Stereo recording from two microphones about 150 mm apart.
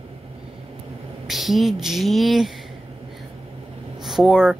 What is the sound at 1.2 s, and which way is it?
Speech, centre (ahead or behind).